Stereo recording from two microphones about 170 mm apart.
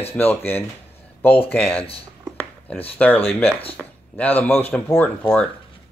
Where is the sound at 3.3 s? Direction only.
5° left (ahead or behind).